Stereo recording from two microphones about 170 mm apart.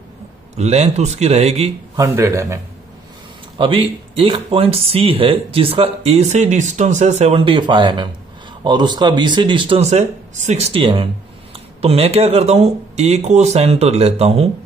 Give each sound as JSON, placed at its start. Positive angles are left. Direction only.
{"t": 0.6, "sound": "speech", "side_deg": -40}
{"t": 2.0, "sound": "speech", "side_deg": -15}
{"t": 3.5, "sound": "speech", "side_deg": -30}